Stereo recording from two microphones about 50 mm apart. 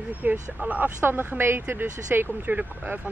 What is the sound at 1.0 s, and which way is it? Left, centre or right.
Speech, right.